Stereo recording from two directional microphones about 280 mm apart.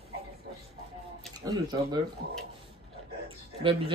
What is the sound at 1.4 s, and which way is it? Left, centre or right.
Speech, centre.